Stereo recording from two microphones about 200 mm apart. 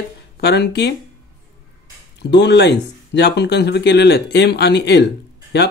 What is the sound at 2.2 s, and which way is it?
Speech, 60° left (ahead or behind).